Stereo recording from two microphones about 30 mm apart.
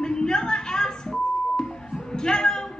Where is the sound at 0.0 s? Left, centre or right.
Left.